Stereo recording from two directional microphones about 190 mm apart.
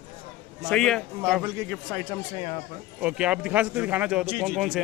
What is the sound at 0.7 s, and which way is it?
Speech, centre (ahead or behind).